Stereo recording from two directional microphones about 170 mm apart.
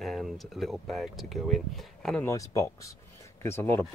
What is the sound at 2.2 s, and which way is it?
Speech, 20° left (ahead or behind).